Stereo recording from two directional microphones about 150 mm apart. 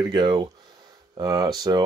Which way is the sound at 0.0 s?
30° right (ahead or behind).